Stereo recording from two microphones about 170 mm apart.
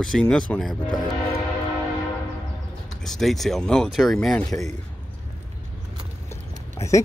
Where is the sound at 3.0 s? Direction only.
Centre (ahead or behind).